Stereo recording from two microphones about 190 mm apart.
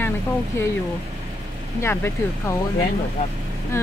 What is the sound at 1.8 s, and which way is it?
Speech, 15° left (ahead or behind).